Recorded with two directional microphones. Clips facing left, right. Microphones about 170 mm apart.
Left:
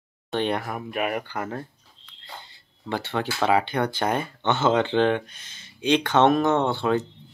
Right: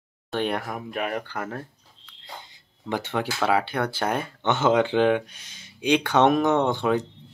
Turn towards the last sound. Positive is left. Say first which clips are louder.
# even
turn(degrees=-15)  # may be behind; listen again after turning